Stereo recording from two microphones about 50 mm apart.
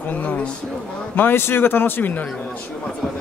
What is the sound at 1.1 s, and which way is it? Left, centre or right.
A man's voice, left.